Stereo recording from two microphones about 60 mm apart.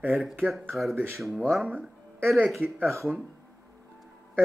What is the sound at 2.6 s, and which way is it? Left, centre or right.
Speech, right.